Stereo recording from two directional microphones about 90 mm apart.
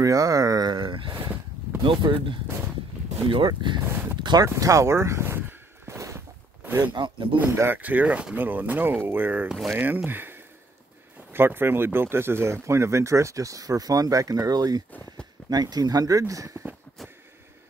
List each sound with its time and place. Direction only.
0.0 s speech: 40° right (ahead or behind)
0.7 s speech: 60° right (ahead or behind)
3.8 s speech: 25° right (ahead or behind)
4.2 s speech: 55° right (ahead or behind)
4.6 s speech: 35° right (ahead or behind)
5.9 s a sound: 30° right (ahead or behind)
6.9 s speech: 65° right (ahead or behind)
7.3 s speech: 25° right (ahead or behind)